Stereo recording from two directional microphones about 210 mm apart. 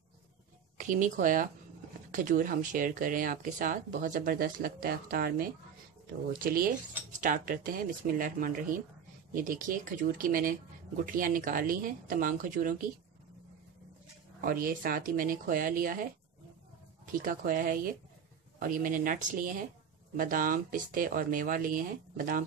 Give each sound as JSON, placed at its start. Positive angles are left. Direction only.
{"t": 0.7, "sound": "speech", "side_deg": -40}
{"t": 14.4, "sound": "speech", "side_deg": -45}